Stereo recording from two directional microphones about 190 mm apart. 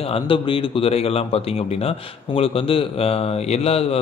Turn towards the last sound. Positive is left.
turn(degrees=30)  # may be behind; listen again after turning